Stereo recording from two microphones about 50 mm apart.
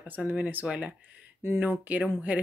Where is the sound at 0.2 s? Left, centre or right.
Right.